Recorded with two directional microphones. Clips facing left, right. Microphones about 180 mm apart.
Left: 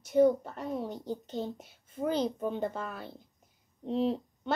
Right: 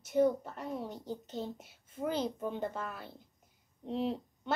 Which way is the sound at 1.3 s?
5° right (ahead or behind).